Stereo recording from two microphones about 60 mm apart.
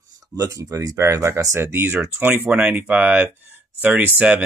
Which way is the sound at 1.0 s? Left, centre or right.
Right.